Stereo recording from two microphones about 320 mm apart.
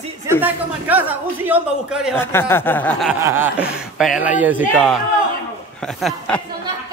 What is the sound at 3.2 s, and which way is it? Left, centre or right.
A man's voice, centre.